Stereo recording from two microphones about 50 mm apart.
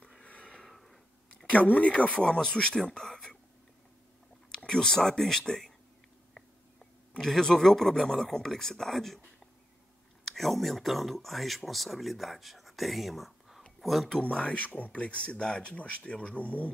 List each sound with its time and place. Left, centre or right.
0.2 s a sound: left
0.7 s a sound: centre
1.3 s speech: left
2.2 s speech: centre
4.5 s speech: centre
10.2 s speech: centre
14.5 s speech: left